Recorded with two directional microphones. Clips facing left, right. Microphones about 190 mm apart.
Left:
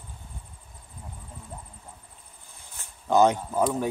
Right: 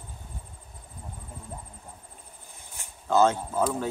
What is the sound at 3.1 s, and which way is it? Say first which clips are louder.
Speech: left 2 dB; 15° left (ahead or behind).